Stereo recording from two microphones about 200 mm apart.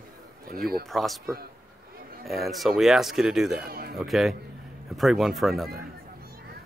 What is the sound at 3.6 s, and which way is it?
Speech, 50° right (ahead or behind).